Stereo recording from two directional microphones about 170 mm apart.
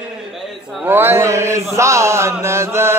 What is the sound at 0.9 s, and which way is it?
Mantra, 15° right (ahead or behind).